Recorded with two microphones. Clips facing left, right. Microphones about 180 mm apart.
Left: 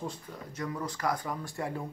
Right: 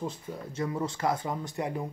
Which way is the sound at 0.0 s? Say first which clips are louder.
Right 3 dB; 25° right (ahead or behind).